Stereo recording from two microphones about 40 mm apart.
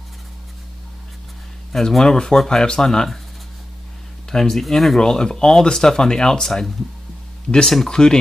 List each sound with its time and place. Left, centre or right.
1.7 s speech: centre
4.3 s speech: centre
7.6 s speech: centre